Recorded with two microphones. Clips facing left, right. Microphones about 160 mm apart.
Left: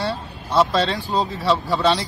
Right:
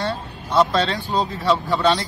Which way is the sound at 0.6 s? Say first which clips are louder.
Even; centre (ahead or behind).